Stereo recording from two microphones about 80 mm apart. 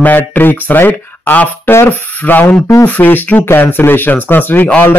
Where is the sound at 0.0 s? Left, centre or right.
Left.